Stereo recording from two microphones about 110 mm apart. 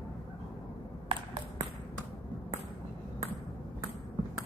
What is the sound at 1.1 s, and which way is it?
Ping, 55° right (ahead or behind).